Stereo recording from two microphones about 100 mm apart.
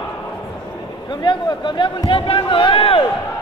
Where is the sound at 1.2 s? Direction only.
50° left (ahead or behind).